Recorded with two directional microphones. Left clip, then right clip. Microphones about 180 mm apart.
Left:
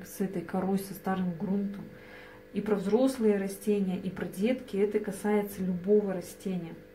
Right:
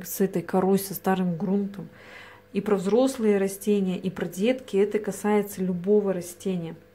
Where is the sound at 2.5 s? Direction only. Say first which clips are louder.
Right 5 dB; 45° right (ahead or behind).